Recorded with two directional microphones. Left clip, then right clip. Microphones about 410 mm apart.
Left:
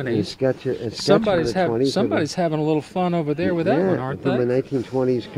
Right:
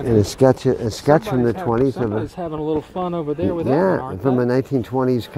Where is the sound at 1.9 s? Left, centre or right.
Centre.